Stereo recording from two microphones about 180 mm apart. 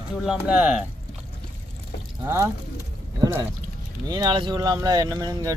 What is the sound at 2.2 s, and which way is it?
Speech, 15° right (ahead or behind).